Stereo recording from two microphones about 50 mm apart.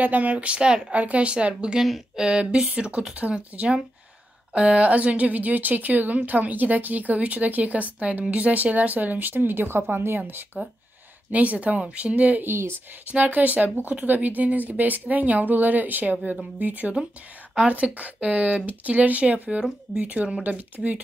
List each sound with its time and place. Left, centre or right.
0.0 s speech: right
0.9 s a woman's voice: right
11.3 s speech: right
12.4 s speech: right
13.0 s a woman's voice: right; by 20.1 s centre
20.4 s a woman's voice: right